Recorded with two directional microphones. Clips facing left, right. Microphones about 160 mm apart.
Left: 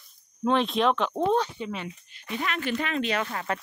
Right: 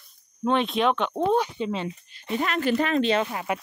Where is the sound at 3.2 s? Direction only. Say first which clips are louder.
Right 2 dB; 15° right (ahead or behind).